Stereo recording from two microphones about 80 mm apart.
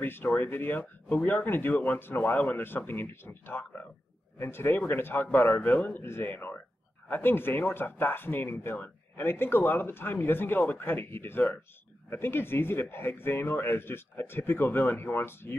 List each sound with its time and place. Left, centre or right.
0.0 s speech: left